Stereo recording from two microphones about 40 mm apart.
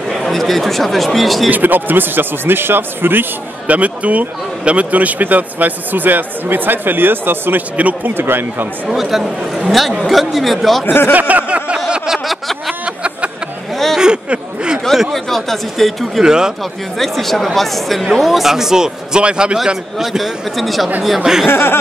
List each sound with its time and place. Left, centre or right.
0.2 s speech: centre
1.5 s speech: right
3.6 s a man's voice: right
8.8 s speech: centre
10.9 s speech: left
11.1 s a sound: right
12.3 s a sound: centre
12.8 s a sound: right
15.1 s speech: centre
16.2 s speech: centre
17.0 s a man's voice: centre
20.1 s speech: centre
21.2 s speech: centre
21.5 s speech: left